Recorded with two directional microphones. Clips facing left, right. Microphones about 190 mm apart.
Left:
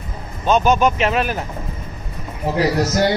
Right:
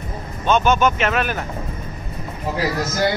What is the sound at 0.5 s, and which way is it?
Speech, 35° left (ahead or behind).